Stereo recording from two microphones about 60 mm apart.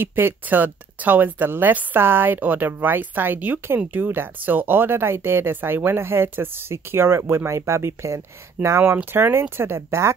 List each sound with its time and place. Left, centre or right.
0.0 s speech: right
8.8 s speech: right